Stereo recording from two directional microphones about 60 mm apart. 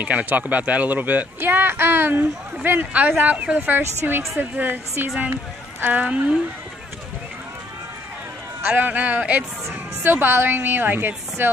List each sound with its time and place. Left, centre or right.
0.0 s a woman's voice: right
8.6 s a woman's voice: right